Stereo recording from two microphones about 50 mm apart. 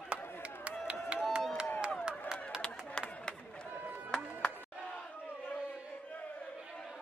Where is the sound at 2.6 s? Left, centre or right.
Left.